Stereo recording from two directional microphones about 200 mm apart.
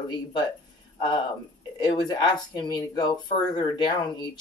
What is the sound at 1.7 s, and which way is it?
Speech, 20° left (ahead or behind).